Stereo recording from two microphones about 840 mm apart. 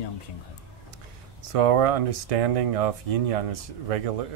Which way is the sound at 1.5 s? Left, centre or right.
Right.